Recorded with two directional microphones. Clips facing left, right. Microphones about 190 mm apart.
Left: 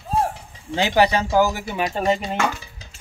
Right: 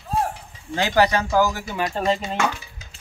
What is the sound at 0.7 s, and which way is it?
Speech, 25° left (ahead or behind).